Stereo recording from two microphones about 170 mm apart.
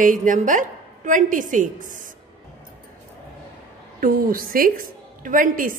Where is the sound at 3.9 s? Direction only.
55° right (ahead or behind).